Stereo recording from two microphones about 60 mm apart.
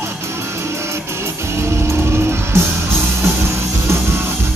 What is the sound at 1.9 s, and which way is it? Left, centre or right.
Music, right.